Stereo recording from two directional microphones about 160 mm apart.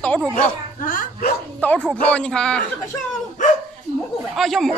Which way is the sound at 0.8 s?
60° left (ahead or behind).